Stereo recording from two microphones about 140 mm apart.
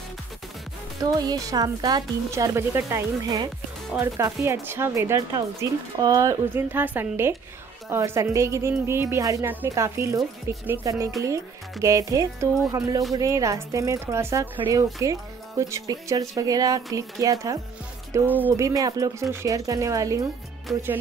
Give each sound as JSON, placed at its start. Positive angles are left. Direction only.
{"t": 1.0, "sound": "speech", "side_deg": -25}
{"t": 6.5, "sound": "a woman's voice", "side_deg": -15}
{"t": 18.1, "sound": "a woman's voice", "side_deg": -15}
{"t": 18.7, "sound": "speech", "side_deg": -25}
{"t": 20.7, "sound": "music", "side_deg": 0}